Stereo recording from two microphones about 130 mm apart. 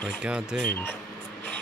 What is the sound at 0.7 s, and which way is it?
Speech, 15° left (ahead or behind).